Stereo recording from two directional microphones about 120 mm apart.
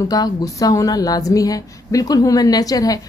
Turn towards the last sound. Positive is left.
turn(degrees=30)  # may be behind; listen again after turning